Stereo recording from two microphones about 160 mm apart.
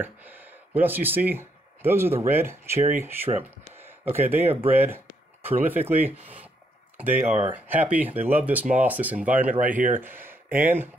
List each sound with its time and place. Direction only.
0.0 s speech: 10° right (ahead or behind)
9.7 s speech: 55° right (ahead or behind)
10.0 s speech: 15° right (ahead or behind)